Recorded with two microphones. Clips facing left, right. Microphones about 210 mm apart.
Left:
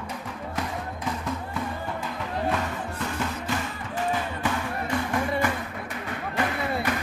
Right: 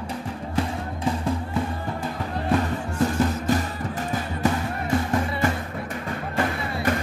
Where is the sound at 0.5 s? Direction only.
30° right (ahead or behind).